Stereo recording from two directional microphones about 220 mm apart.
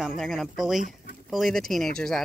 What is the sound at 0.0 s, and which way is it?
Speech, centre (ahead or behind).